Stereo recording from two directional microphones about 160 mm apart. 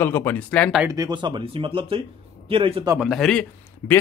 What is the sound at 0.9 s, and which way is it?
Speech, 25° right (ahead or behind).